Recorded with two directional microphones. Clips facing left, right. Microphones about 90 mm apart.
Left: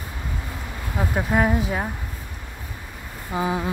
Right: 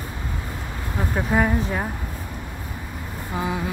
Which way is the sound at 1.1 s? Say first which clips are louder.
Even; 5° left (ahead or behind).